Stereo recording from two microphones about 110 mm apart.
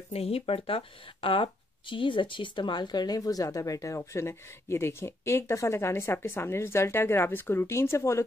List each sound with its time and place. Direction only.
0.1 s speech: 65° left (ahead or behind); by 8.3 s 25° left (ahead or behind)